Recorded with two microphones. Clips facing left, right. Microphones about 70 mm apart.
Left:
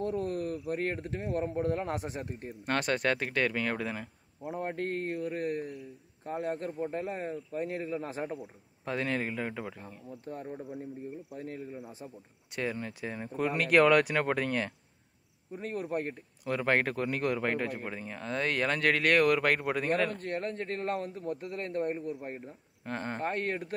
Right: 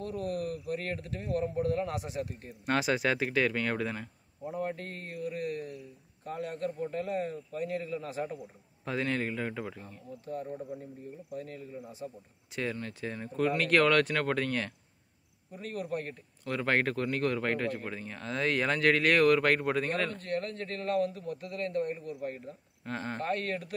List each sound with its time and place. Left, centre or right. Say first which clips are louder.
0.0 s a man's voice: left 2 dB; left
2.6 s speech: right 1 dB; centre
4.6 s a man's voice: left 3 dB; left
8.4 s speech: left 2 dB; centre
11.3 s a man's voice: right 2 dB; left
12.4 s speech: left 1 dB; centre
15.5 s a man's voice: left 2 dB; left
16.4 s speech: left 1 dB; centre
20.2 s a man's voice: even; left
22.8 s speech: left 1 dB; centre
23.2 s a man's voice: even; left